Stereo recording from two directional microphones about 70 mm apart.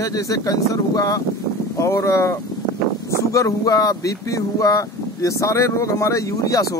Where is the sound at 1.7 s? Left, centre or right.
Left.